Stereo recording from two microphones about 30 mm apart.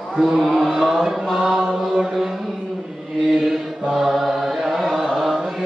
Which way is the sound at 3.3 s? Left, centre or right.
Centre.